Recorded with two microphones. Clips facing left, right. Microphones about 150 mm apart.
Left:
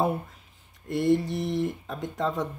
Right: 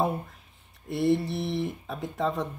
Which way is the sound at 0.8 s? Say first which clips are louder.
Left 1 dB; centre (ahead or behind).